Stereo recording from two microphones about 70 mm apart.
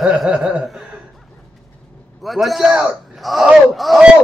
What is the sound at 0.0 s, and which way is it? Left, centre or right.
Speech, centre.